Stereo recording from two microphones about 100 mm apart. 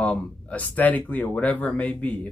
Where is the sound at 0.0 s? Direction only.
15° left (ahead or behind).